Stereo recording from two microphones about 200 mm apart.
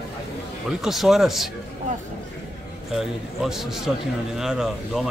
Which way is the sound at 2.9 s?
Centre (ahead or behind).